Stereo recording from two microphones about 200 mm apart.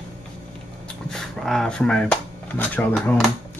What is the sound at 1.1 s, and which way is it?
Speech, centre (ahead or behind).